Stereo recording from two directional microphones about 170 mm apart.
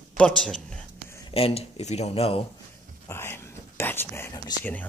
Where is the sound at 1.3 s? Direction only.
35° left (ahead or behind).